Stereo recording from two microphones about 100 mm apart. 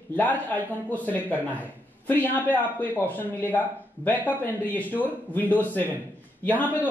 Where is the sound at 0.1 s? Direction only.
15° left (ahead or behind).